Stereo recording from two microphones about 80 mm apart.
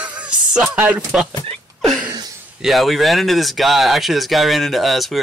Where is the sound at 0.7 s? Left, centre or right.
Centre.